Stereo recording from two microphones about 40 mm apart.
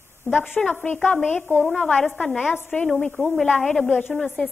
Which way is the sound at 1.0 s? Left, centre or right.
Left.